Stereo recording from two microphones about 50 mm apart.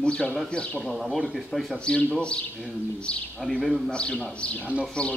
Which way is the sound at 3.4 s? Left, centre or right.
Centre.